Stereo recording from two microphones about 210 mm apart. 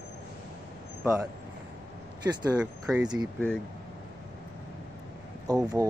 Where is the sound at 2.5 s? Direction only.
5° right (ahead or behind).